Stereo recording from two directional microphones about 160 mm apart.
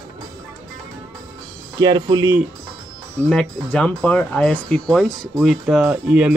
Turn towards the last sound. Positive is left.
turn(degrees=-10)  # may be behind; listen again after turning